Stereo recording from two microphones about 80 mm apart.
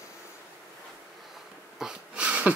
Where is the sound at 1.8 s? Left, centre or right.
Centre.